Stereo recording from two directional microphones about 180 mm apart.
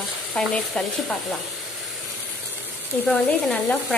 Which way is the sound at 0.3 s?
Centre (ahead or behind).